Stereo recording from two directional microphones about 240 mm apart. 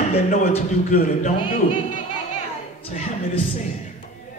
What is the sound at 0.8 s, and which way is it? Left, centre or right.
Speech, left.